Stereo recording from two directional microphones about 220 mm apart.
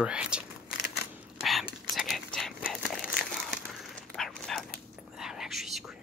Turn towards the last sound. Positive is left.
turn(degrees=0)  # may be behind; listen again after turning